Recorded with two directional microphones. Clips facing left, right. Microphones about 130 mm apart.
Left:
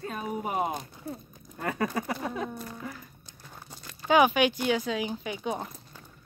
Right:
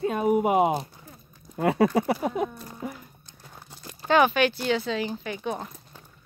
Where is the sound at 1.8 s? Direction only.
30° right (ahead or behind).